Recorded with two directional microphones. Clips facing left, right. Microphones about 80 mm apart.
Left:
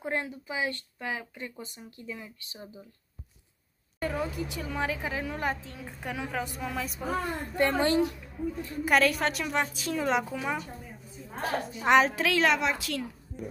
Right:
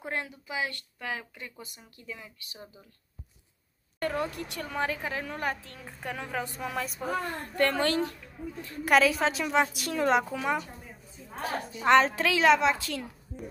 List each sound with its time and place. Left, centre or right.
0.0 s speech: left
4.0 s a woman's voice: centre
7.5 s speech: centre
8.8 s a woman's voice: centre
11.8 s a woman's voice: centre